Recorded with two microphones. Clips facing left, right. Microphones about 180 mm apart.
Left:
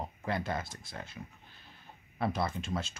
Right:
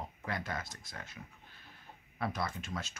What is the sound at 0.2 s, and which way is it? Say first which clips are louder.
Speech: left 5 dB; 30° left (ahead or behind).